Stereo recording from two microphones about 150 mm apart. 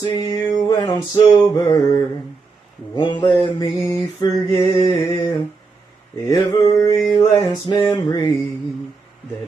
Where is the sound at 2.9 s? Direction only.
35° left (ahead or behind).